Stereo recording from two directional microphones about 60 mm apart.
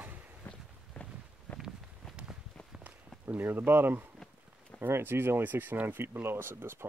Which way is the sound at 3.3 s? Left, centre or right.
Right.